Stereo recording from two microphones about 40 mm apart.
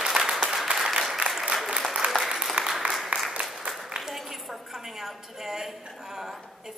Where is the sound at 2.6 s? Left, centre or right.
Right.